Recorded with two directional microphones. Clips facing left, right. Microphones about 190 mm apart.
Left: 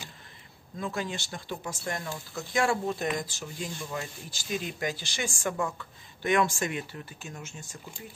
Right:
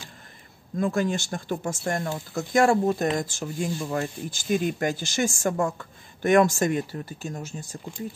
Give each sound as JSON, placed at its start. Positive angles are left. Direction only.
{"t": 0.7, "sound": "speech", "side_deg": -50}